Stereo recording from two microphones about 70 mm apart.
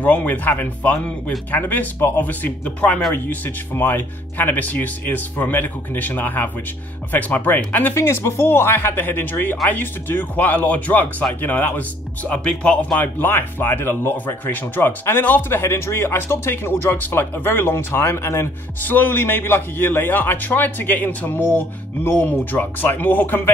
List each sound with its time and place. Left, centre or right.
0.0 s speech: left
13.0 s speech: left
18.9 s speech: left